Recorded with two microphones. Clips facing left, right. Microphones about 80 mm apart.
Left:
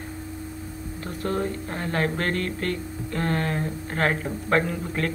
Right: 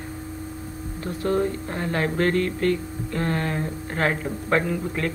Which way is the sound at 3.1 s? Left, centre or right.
Right.